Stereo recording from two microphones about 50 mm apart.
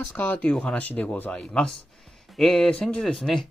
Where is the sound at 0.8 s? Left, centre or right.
Left.